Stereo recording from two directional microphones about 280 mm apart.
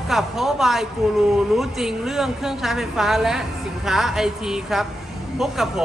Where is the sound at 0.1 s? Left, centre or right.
Centre.